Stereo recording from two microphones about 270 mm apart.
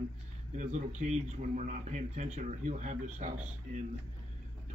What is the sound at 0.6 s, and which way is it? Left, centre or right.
Speech, right.